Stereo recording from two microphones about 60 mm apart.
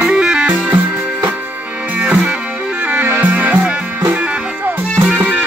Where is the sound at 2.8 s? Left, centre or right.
Right.